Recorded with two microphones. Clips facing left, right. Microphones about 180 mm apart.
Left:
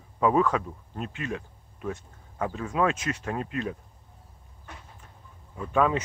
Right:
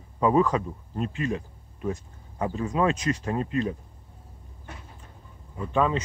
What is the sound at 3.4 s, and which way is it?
Speech, 35° right (ahead or behind).